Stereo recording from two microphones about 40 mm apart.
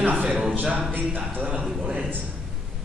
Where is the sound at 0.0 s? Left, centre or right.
Right.